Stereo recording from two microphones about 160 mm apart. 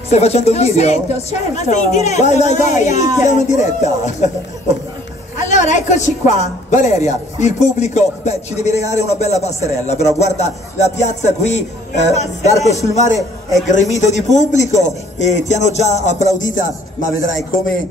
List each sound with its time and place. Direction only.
0.1 s a woman's voice: 40° left (ahead or behind)
5.5 s a woman's voice: 50° left (ahead or behind)